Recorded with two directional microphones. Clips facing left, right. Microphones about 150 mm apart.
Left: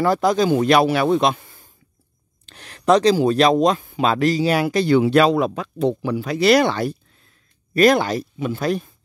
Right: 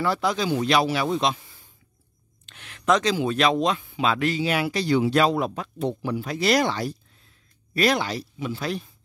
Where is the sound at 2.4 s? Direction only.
35° left (ahead or behind).